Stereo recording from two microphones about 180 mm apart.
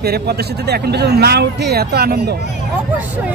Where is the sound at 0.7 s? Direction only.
65° right (ahead or behind).